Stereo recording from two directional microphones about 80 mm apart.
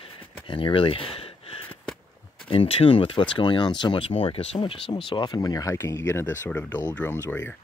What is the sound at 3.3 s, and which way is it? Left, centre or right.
Speech, left.